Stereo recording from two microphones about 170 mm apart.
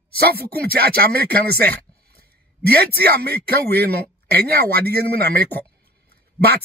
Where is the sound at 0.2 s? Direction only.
65° right (ahead or behind).